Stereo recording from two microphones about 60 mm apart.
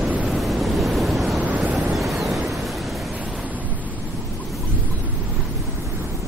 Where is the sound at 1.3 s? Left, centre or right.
Right.